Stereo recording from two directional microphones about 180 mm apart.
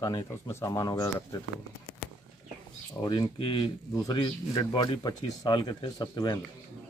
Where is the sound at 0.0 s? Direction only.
20° left (ahead or behind).